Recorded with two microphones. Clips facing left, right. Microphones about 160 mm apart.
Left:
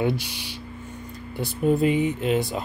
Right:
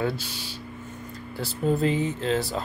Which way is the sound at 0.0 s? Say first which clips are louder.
Left 3 dB; 15° left (ahead or behind).